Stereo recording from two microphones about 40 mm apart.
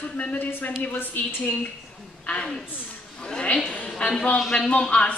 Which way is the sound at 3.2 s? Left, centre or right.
Left.